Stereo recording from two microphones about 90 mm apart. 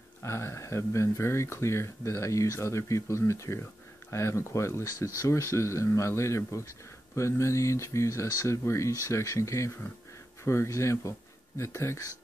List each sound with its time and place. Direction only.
0.2 s speech: 30° left (ahead or behind)